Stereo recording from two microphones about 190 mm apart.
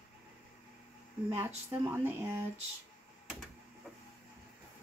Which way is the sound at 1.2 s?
15° right (ahead or behind).